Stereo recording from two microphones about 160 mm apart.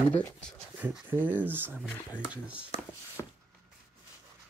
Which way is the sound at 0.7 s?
10° right (ahead or behind).